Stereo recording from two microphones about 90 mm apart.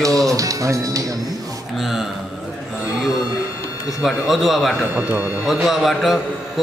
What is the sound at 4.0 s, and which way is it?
A man's voice, 5° right (ahead or behind).